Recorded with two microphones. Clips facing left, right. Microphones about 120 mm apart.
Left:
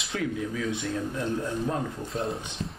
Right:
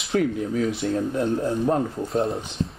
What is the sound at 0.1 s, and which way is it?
Speech, 40° right (ahead or behind).